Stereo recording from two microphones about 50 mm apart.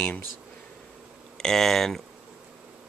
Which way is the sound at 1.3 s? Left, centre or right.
Centre.